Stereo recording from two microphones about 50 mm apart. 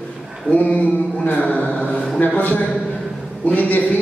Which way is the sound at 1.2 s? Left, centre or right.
Left.